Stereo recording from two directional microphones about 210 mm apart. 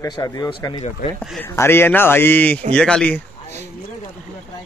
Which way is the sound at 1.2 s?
Centre (ahead or behind).